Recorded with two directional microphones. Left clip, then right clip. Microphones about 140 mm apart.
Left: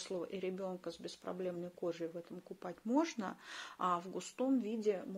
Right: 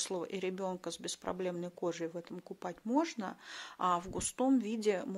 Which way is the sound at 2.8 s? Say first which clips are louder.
Right 2 dB; 10° right (ahead or behind).